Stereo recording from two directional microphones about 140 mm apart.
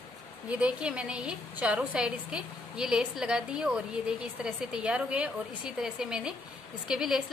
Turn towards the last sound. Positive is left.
turn(degrees=-5)  # may be behind; listen again after turning